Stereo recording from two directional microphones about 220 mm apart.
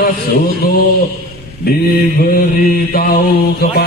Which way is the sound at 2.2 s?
40° left (ahead or behind).